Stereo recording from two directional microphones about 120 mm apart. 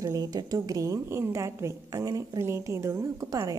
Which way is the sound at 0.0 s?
30° right (ahead or behind).